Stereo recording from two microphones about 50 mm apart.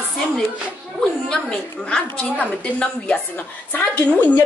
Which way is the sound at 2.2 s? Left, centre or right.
Left.